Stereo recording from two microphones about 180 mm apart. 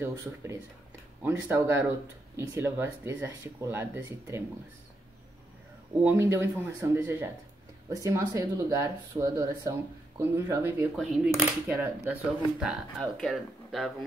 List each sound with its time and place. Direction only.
0.0 s speech: 15° right (ahead or behind)
6.0 s speech: 15° right (ahead or behind)
11.0 s speech: centre (ahead or behind)
11.7 s speech: 10° right (ahead or behind)